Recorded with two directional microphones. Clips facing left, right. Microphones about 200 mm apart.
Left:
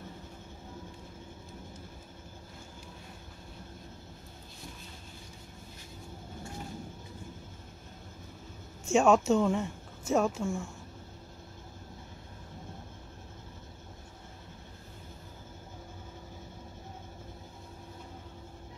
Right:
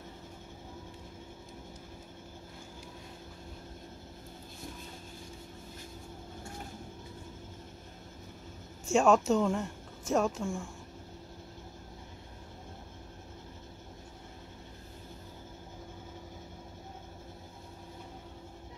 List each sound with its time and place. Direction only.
8.9 s speech: centre (ahead or behind)